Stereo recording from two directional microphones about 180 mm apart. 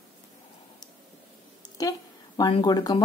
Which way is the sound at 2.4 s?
25° left (ahead or behind).